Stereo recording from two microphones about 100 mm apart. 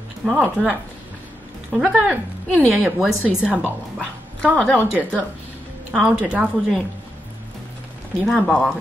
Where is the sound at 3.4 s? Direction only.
15° right (ahead or behind).